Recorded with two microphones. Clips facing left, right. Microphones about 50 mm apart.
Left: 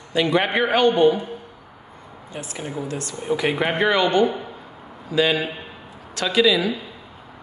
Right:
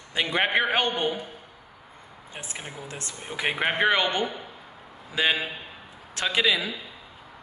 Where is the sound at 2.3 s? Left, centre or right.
Right.